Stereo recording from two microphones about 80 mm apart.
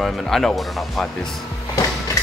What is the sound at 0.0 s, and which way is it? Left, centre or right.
Speech, centre.